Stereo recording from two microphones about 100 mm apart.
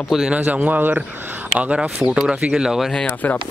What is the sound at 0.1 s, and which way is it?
Speech, 10° right (ahead or behind).